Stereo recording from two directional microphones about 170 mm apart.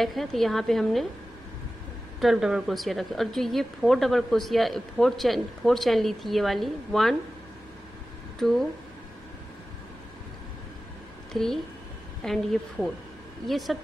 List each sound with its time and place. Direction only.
0.0 s a woman's voice: centre (ahead or behind)
2.1 s a woman's voice: centre (ahead or behind)
8.4 s a woman's voice: centre (ahead or behind)
11.3 s a woman's voice: centre (ahead or behind)